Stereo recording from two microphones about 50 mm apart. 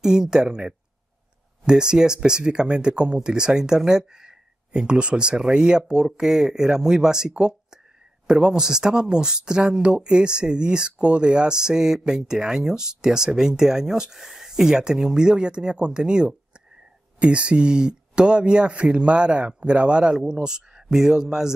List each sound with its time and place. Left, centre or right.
0.0 s speech: centre